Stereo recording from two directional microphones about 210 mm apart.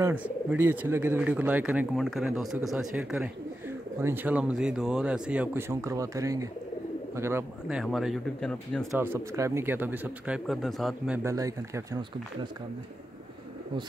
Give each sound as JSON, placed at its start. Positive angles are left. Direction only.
{"t": 0.0, "sound": "speech", "side_deg": -5}
{"t": 8.9, "sound": "speech", "side_deg": -10}
{"t": 11.2, "sound": "speech", "side_deg": -15}